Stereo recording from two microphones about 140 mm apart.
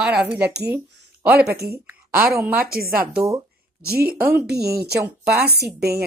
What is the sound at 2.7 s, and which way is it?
Speech, 90° right.